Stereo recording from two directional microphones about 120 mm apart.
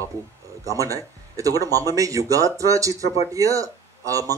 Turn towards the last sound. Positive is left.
turn(degrees=-30)  # may be behind; listen again after turning